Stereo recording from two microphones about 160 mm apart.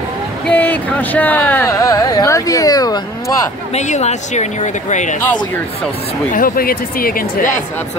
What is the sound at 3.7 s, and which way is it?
Speech, 45° left (ahead or behind).